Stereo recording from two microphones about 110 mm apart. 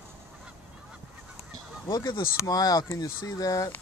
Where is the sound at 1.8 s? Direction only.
35° left (ahead or behind).